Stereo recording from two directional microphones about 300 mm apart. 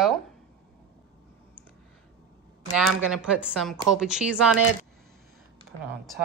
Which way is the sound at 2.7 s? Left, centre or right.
Centre.